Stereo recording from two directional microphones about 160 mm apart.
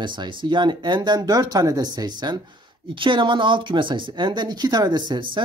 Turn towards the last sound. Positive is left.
turn(degrees=-25)  # may be behind; listen again after turning